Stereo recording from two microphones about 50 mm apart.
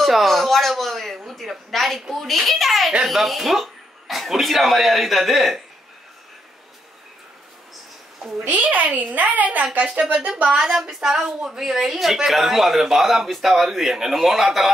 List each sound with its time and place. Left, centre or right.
0.0 s speech: centre
8.5 s a woman's voice: right
10.6 s a sound: centre
11.2 s speech: centre